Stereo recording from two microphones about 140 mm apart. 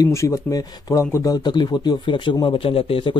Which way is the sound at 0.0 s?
20° left (ahead or behind).